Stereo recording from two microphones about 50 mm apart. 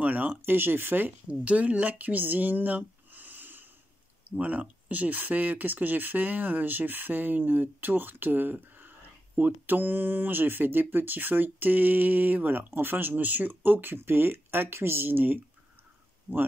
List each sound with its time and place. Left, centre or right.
0.0 s speech: right
1.4 s speech: right